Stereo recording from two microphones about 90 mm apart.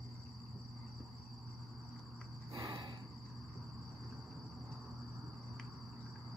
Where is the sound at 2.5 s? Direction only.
50° right (ahead or behind).